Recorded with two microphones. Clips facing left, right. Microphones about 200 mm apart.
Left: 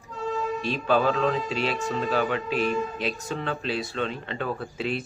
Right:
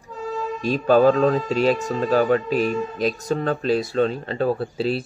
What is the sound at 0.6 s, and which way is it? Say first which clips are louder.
Speech: right 9 dB; 40° right (ahead or behind).